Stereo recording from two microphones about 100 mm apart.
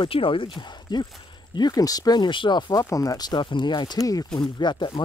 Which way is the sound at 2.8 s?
35° left (ahead or behind).